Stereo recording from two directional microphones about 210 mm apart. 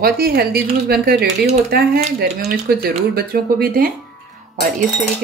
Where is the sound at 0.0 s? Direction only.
45° right (ahead or behind).